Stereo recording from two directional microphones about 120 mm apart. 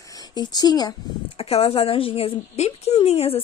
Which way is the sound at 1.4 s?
55° left (ahead or behind).